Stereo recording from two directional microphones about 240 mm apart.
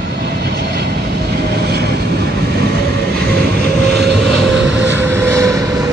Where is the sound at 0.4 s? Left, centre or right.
Right.